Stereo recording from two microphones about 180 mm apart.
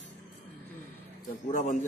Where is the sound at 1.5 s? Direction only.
45° left (ahead or behind).